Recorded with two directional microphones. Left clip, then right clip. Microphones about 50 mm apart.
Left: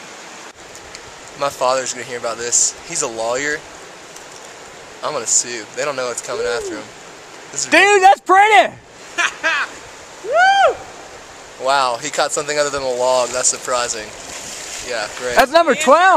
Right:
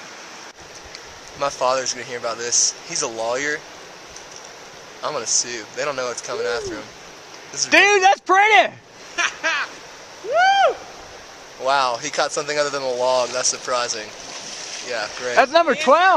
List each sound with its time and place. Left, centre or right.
1.4 s speech: centre
5.0 s speech: centre
7.7 s speech: left
8.4 s a sound: centre
11.6 s speech: right
12.0 s speech: centre
13.7 s boat: centre
14.9 s speech: centre